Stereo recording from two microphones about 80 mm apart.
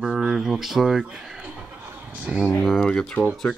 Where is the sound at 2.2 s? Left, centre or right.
Centre.